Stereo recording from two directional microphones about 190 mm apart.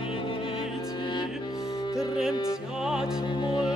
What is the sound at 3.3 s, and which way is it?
Music, 20° left (ahead or behind).